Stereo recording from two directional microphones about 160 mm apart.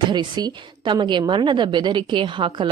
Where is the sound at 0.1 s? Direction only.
30° right (ahead or behind).